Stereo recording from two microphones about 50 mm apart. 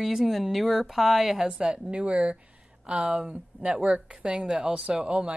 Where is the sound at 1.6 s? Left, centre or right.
Right.